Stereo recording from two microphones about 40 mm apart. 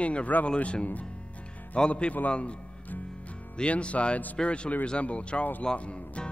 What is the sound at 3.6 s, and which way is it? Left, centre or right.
Speech, left.